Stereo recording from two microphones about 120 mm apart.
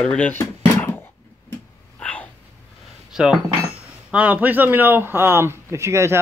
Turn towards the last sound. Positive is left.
turn(degrees=-25)  # may be behind; listen again after turning